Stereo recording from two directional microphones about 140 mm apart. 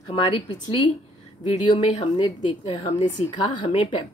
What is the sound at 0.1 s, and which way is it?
Speech, 35° left (ahead or behind).